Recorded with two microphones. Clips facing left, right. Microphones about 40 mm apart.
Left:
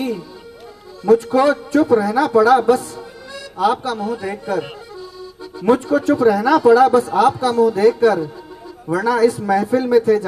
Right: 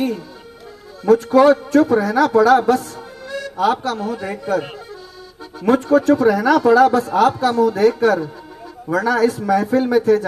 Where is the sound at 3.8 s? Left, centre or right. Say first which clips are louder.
Even; right.